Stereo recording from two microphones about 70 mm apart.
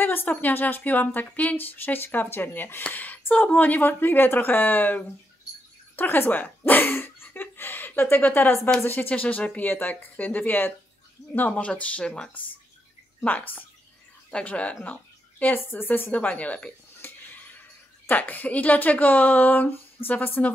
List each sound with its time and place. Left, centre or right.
0.0 s a woman's voice: left